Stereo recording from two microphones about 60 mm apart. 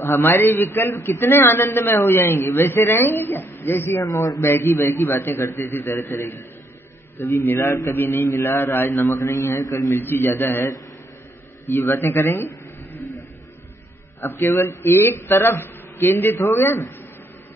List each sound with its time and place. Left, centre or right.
0.0 s a woman's voice: left
4.0 s a man's voice: left
4.4 s a man's voice: left
7.4 s a man's voice: left
7.9 s a woman's voice: left
8.9 s a man's voice: left
9.9 s a woman's voice: left
14.2 s a woman's voice: left